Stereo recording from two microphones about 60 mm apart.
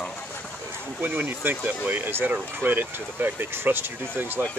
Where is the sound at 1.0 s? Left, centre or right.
Right.